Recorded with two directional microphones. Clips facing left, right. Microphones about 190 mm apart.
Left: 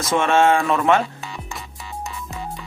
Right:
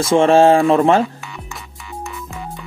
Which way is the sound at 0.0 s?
30° right (ahead or behind).